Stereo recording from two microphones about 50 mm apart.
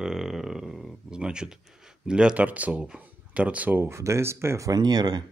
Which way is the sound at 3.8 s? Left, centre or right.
Right.